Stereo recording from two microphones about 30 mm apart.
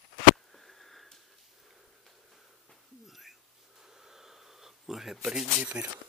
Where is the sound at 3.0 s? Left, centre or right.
Centre.